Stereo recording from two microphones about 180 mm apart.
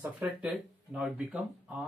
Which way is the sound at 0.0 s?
10° right (ahead or behind).